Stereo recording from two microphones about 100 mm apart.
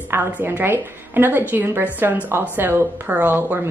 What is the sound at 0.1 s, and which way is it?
Speech, 20° right (ahead or behind).